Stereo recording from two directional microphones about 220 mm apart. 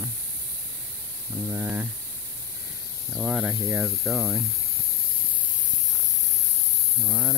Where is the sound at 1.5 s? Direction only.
10° right (ahead or behind).